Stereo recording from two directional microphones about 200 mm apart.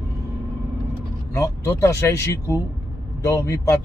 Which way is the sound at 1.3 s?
15° left (ahead or behind).